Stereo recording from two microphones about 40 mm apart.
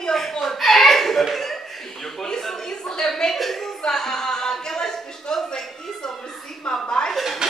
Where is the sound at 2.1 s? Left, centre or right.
Centre.